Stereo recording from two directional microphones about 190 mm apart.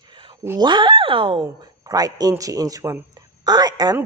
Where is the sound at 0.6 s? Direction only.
25° right (ahead or behind).